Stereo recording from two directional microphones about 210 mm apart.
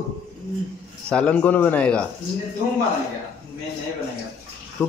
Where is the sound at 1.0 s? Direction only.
5° left (ahead or behind).